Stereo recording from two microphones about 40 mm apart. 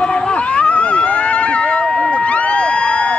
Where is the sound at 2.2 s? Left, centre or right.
Left.